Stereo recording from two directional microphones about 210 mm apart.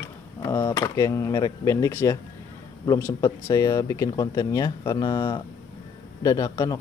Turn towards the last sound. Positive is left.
turn(degrees=15)  # may be behind; listen again after turning